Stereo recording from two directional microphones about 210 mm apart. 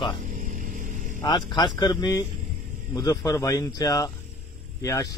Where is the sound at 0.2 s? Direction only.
40° right (ahead or behind).